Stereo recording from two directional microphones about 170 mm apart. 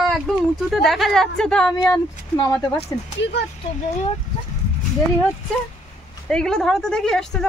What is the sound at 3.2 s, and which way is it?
Speech, 80° left.